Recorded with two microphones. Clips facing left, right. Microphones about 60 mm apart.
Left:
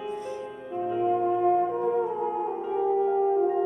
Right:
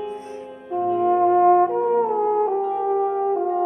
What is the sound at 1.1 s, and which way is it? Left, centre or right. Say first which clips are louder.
French horn: right 9 dB; right.